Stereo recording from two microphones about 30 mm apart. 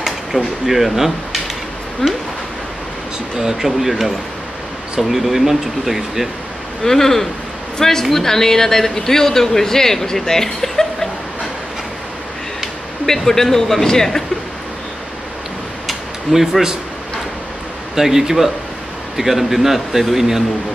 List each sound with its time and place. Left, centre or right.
0.0 s speech: centre
2.0 s speech: centre
3.3 s speech: centre
5.0 s speech: centre
6.8 s speech: centre
13.0 s speech: centre
15.9 s a sound: centre
17.9 s speech: centre